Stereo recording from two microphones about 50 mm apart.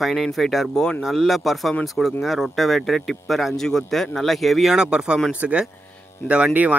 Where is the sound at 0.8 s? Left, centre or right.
Centre.